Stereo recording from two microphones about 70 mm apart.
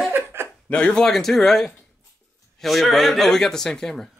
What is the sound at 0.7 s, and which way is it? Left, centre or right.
Speech, centre.